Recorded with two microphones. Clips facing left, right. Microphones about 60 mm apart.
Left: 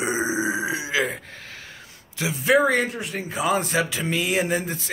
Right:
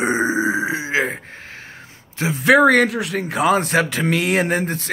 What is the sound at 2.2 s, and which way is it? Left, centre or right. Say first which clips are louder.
Speech: right 6 dB; right.